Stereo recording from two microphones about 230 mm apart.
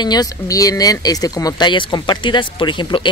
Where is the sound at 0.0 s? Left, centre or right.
Centre.